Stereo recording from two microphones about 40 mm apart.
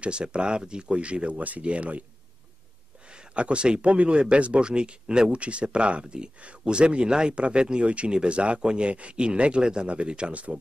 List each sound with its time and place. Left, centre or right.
0.0 s speech: right
3.1 s speech: right